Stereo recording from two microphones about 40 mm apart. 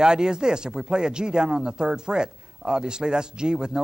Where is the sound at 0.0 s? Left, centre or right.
Centre.